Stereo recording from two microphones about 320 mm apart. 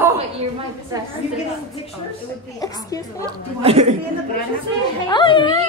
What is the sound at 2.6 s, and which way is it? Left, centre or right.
Speech, centre.